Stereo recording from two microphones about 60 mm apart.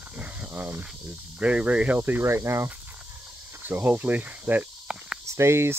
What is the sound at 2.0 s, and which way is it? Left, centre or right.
Speech, right.